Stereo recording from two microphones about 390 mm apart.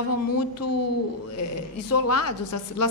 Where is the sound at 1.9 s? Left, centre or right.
Left.